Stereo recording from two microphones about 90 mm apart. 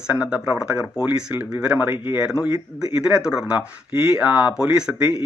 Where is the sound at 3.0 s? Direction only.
10° right (ahead or behind).